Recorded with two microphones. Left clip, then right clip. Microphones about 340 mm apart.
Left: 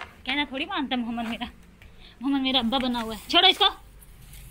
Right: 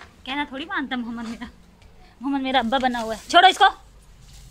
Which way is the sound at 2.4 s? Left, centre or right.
Right.